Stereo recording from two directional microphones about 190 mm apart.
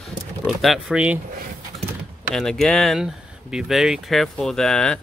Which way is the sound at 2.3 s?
Centre (ahead or behind).